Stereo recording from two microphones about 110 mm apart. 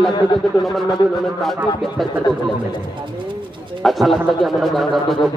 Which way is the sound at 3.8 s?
Centre (ahead or behind).